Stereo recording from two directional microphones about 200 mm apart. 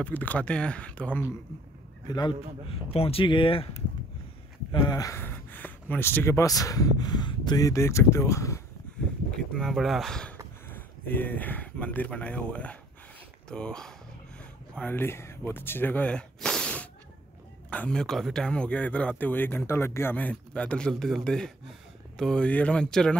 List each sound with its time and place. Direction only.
0.0 s speech: 10° left (ahead or behind)
2.0 s speech: 20° left (ahead or behind)
4.8 s speech: 15° left (ahead or behind)
9.5 s speech: centre (ahead or behind)